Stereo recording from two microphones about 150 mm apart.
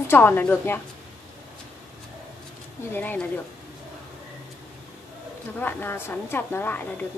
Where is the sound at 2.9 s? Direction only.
10° left (ahead or behind).